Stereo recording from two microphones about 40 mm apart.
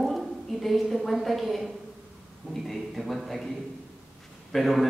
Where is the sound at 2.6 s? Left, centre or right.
Centre.